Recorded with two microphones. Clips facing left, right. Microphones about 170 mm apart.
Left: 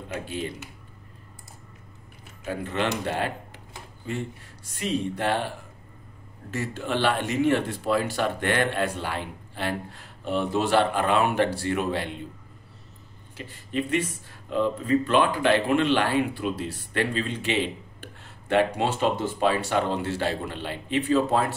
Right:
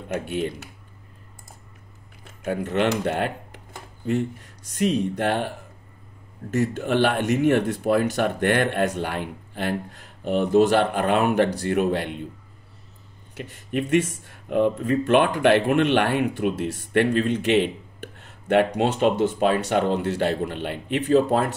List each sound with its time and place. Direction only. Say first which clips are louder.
0.2 s speech: right 4 dB; 60° right (ahead or behind)
2.4 s speech: right 5 dB; 55° right (ahead or behind)
6.5 s speech: right 6 dB; 50° right (ahead or behind)
13.3 s speech: right 4 dB; 55° right (ahead or behind)
18.2 s a sound: right 3 dB; 55° right (ahead or behind)
18.8 s speech: right 5 dB; 55° right (ahead or behind)